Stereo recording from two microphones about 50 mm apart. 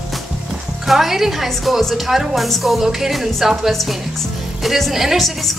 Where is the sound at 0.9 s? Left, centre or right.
Centre.